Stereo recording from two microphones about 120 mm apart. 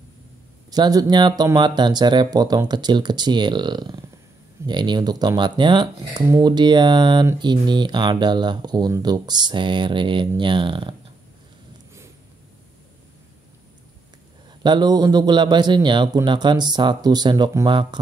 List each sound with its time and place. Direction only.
0.7 s speech: 35° right (ahead or behind)
14.6 s speech: 35° right (ahead or behind)